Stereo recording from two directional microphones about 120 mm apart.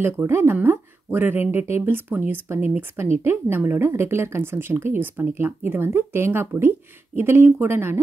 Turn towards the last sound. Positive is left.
turn(degrees=-20)  # may be behind; listen again after turning